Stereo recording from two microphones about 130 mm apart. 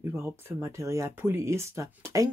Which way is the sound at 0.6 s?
20° right (ahead or behind).